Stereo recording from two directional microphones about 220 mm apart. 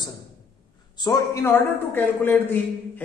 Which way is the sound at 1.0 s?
15° left (ahead or behind).